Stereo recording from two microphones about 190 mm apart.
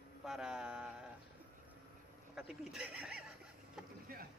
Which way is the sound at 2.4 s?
Centre (ahead or behind).